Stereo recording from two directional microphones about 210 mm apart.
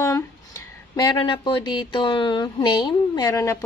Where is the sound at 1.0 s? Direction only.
25° left (ahead or behind).